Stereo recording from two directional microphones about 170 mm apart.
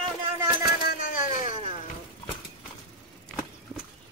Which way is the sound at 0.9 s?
55° left (ahead or behind).